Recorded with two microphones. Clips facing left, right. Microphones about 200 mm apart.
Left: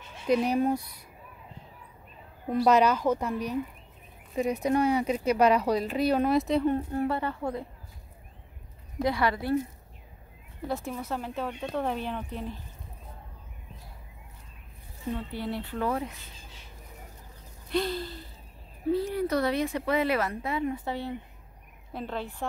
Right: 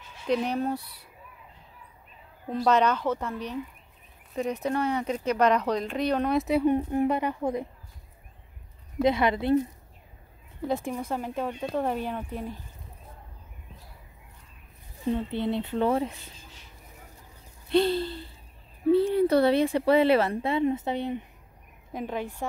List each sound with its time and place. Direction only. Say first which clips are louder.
0.3 s speech: left 2 dB; 10° left (ahead or behind)
2.5 s speech: left 1 dB; 10° left (ahead or behind); by 7.6 s 15° right (ahead or behind)
9.0 s a woman's voice: right 4 dB; 20° right (ahead or behind)
10.7 s speech: right 3 dB; 15° right (ahead or behind)
15.0 s a woman's voice: right 5 dB; 25° right (ahead or behind)
17.6 s a woman's voice: right 6 dB; 30° right (ahead or behind)